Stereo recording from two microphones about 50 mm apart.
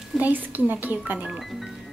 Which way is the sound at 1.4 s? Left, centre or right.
Centre.